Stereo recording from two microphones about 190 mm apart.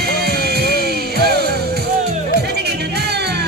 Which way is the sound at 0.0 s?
55° right (ahead or behind).